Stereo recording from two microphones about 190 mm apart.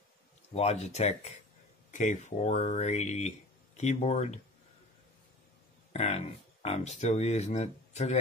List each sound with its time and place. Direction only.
0.5 s speech: 35° left (ahead or behind)
5.9 s speech: 35° left (ahead or behind)